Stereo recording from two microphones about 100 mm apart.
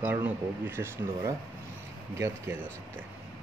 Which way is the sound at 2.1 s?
25° right (ahead or behind).